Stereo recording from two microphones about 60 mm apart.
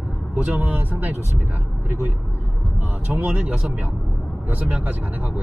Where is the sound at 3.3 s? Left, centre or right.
Right.